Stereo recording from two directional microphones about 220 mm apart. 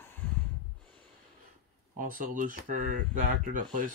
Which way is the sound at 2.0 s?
35° right (ahead or behind).